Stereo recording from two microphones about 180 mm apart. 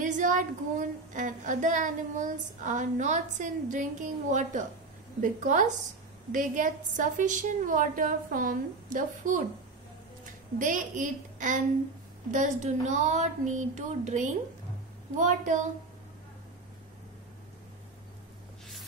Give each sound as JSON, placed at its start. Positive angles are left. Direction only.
{"t": 0.0, "sound": "speech", "side_deg": -45}
{"t": 10.6, "sound": "speech", "side_deg": -45}